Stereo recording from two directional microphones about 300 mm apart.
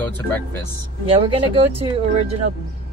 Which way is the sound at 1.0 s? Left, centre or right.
Centre.